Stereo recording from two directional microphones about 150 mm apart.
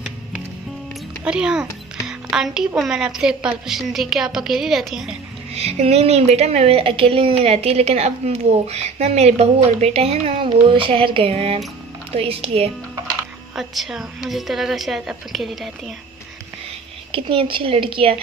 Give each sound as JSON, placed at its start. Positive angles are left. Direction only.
{"t": 1.2, "sound": "speech", "side_deg": -5}
{"t": 5.5, "sound": "a woman's voice", "side_deg": -45}
{"t": 13.6, "sound": "speech", "side_deg": 0}
{"t": 17.1, "sound": "a woman's voice", "side_deg": -35}